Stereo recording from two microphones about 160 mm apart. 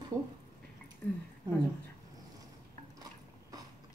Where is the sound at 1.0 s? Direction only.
15° left (ahead or behind).